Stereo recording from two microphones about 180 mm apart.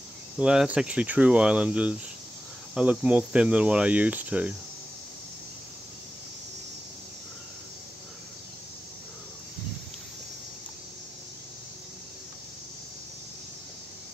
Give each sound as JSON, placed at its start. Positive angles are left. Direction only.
{"t": 0.4, "sound": "speech", "side_deg": -5}